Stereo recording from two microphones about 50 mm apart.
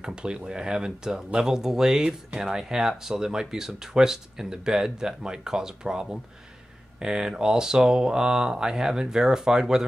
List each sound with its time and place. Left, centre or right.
0.0 s speech: centre